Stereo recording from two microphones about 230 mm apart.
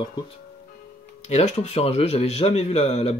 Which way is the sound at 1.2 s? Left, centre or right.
Left.